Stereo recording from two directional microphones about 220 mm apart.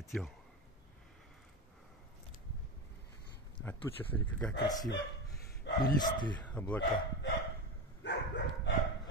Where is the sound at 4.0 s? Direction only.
5° left (ahead or behind).